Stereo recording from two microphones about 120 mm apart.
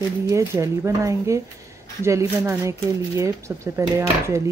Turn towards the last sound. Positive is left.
turn(degrees=-25)  # may be behind; listen again after turning